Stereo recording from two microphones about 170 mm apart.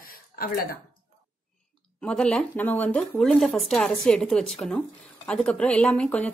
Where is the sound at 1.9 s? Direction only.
5° left (ahead or behind).